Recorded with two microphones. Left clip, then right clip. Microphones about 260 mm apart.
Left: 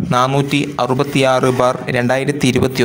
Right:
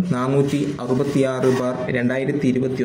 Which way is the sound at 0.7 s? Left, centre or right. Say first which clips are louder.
Left 6 dB; left.